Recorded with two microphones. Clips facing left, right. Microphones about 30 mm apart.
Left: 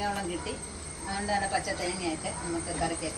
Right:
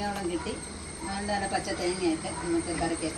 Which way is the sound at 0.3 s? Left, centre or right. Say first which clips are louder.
Right 2 dB; centre.